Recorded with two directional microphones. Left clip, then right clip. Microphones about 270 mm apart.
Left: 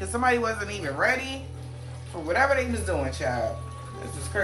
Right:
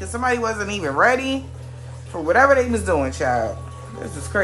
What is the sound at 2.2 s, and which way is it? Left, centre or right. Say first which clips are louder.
Speech: right 8 dB; right.